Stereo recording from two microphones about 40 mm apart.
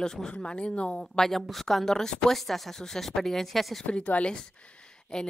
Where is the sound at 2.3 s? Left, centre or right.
Centre.